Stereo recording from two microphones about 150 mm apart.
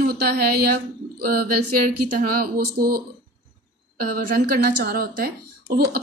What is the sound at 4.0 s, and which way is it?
A woman's voice, 80° right.